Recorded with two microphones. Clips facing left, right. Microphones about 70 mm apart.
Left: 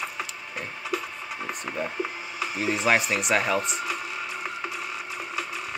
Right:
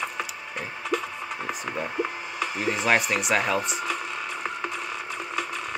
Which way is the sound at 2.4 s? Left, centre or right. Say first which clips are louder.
Left 1 dB; centre.